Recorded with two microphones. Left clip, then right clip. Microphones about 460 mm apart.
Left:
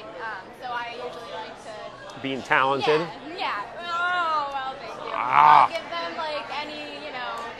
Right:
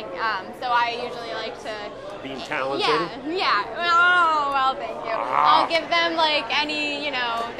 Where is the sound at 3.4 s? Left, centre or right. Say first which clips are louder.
Right 7 dB; centre.